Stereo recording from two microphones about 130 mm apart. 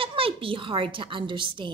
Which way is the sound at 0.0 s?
45° right (ahead or behind).